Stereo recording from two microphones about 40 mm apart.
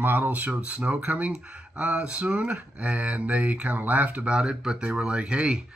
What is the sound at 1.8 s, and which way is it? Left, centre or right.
Speech, right.